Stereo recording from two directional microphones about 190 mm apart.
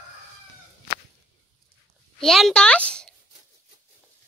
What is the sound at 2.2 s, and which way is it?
Speech, centre (ahead or behind).